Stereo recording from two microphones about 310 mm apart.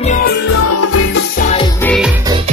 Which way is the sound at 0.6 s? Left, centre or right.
Left.